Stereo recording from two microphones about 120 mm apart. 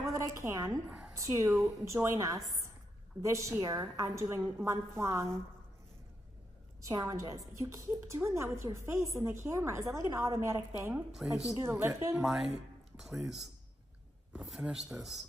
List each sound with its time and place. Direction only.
0.0 s a woman's voice: 25° right (ahead or behind)
6.8 s a woman's voice: 30° right (ahead or behind)
12.2 s speech: centre (ahead or behind)